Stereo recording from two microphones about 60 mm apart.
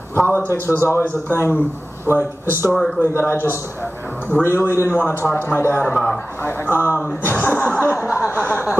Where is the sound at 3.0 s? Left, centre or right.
Left.